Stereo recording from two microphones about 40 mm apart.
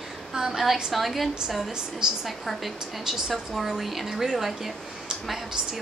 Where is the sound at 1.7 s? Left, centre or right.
Centre.